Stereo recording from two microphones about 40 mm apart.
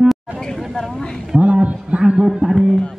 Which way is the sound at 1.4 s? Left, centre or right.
Right.